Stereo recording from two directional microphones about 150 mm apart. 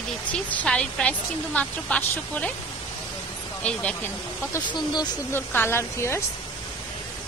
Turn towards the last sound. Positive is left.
turn(degrees=15)  # may be behind; listen again after turning